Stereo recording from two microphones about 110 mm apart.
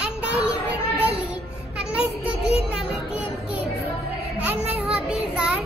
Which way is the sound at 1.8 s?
10° right (ahead or behind).